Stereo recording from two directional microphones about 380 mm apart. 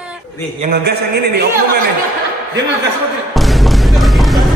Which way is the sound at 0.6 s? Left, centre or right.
Right.